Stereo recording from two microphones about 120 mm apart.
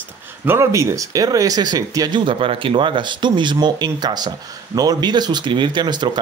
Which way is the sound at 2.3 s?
45° right (ahead or behind).